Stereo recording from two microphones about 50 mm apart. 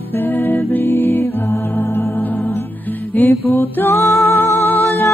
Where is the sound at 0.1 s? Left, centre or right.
Left.